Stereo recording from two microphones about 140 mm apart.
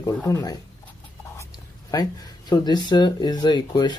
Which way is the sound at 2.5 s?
30° left (ahead or behind).